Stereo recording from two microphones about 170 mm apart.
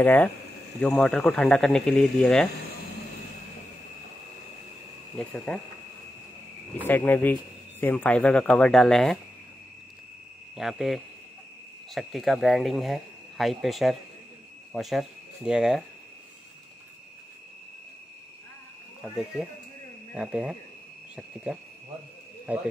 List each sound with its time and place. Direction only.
0.0 s speech: 10° left (ahead or behind)
5.1 s speech: 5° left (ahead or behind)
6.9 s speech: 10° left (ahead or behind)
10.5 s speech: centre (ahead or behind)
20.2 s speech: 5° right (ahead or behind)